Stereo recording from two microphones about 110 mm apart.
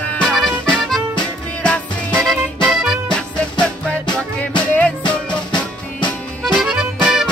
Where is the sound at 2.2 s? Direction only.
5° right (ahead or behind).